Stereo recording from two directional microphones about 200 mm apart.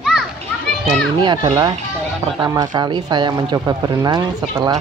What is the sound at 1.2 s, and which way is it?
Speech, 20° right (ahead or behind).